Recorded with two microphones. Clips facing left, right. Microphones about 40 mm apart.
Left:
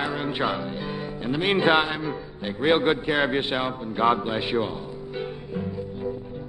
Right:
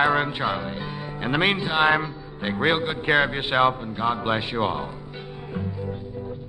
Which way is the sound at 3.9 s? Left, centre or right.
Centre.